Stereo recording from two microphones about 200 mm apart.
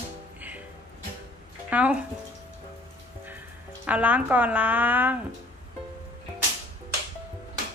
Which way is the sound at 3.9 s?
5° right (ahead or behind).